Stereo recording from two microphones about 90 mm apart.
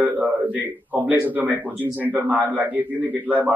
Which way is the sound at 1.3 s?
20° right (ahead or behind).